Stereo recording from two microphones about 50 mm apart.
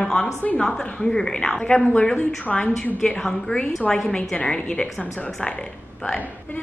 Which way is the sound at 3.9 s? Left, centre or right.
Centre.